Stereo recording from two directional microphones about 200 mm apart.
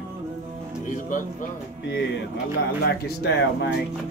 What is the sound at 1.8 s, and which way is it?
Speech, 60° left (ahead or behind).